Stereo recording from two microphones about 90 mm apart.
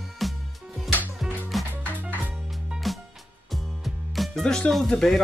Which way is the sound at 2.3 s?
Centre (ahead or behind).